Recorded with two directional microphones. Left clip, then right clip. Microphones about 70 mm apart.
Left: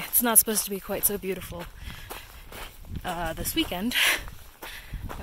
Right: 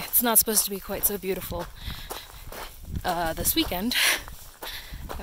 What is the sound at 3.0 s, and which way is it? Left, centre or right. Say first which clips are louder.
Speech: right 4 dB; right.